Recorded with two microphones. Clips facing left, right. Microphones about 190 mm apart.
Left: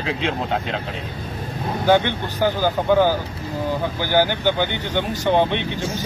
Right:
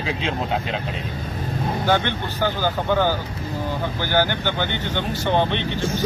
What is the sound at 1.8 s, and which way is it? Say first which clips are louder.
Speech: left 6 dB; 15° left (ahead or behind).